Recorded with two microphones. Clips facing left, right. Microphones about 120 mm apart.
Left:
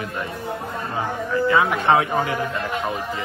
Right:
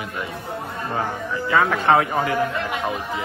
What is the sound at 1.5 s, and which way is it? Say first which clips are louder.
Speech: right 2 dB; 20° left (ahead or behind).